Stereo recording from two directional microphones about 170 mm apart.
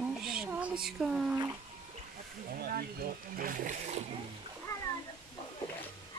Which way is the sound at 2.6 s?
60° right (ahead or behind).